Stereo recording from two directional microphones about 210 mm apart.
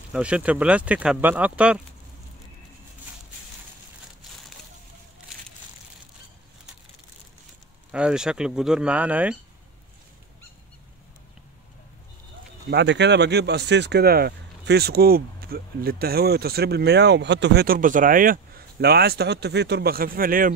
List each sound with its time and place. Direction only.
0.1 s speech: 5° right (ahead or behind)
7.9 s speech: 5° right (ahead or behind)
12.6 s speech: 55° right (ahead or behind)